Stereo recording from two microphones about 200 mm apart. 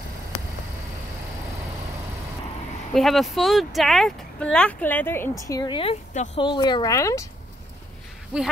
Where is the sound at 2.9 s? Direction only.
Centre (ahead or behind).